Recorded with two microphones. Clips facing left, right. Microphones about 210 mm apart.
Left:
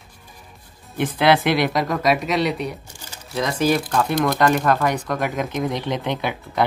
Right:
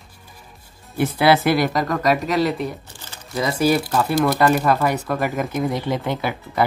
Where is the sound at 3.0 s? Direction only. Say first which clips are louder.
Even; 10° left (ahead or behind).